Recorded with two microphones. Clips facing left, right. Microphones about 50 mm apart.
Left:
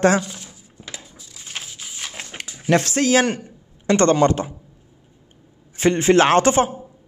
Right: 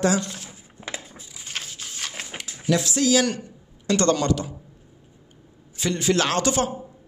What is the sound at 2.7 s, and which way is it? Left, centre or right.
A man's voice, left.